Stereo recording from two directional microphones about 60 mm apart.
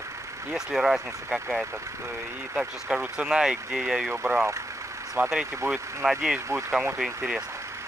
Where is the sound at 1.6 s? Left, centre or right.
Right.